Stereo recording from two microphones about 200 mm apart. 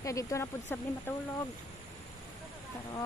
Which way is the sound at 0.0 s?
15° left (ahead or behind).